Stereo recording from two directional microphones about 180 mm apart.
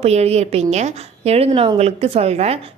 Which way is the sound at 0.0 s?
35° right (ahead or behind).